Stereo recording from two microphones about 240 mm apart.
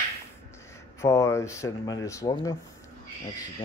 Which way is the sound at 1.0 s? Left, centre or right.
Centre.